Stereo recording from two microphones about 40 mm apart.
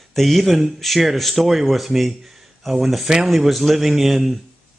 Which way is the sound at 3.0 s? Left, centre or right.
Centre.